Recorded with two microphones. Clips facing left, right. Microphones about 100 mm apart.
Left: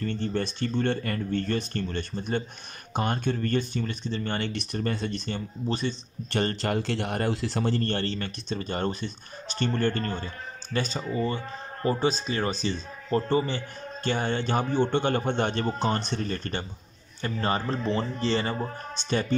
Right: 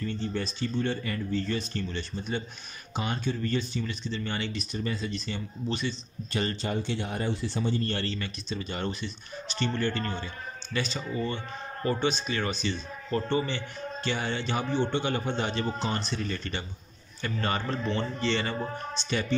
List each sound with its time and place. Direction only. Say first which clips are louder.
0.0 s speech: left 3 dB; 55° left (ahead or behind)
6.3 s a man's voice: left 3 dB; 70° left (ahead or behind); by 7.9 s 85° left
7.9 s speech: left 3 dB; 50° left (ahead or behind)
17.2 s speech: left 3 dB; 30° left (ahead or behind)